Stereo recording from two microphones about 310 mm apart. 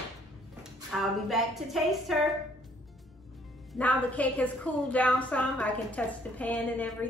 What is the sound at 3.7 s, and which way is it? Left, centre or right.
A woman's voice, centre.